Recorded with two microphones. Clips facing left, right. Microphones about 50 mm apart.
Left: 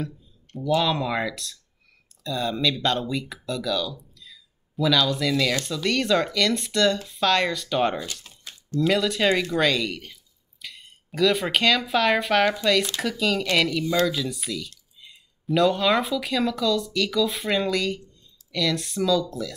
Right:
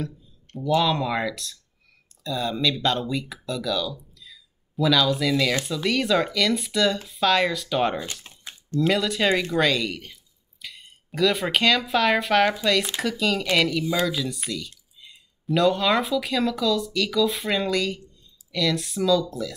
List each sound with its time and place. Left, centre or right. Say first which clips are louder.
0.6 s speech: right 1 dB; centre
8.0 s a sound: right 1 dB; centre
8.8 s speech: left 1 dB; centre